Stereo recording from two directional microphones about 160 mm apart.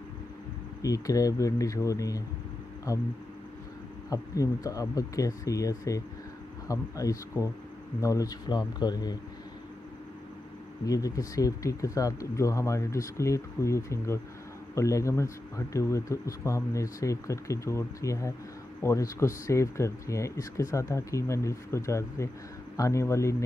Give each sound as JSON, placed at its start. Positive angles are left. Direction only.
{"t": 0.8, "sound": "speech", "side_deg": 20}
{"t": 4.1, "sound": "speech", "side_deg": 20}
{"t": 10.9, "sound": "speech", "side_deg": 20}